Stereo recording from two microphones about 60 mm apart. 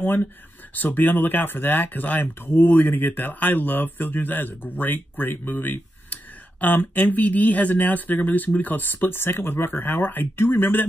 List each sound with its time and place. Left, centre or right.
0.7 s speech: left